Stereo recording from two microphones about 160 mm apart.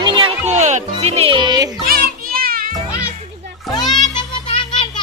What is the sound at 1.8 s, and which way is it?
Children playing, 70° right (ahead or behind).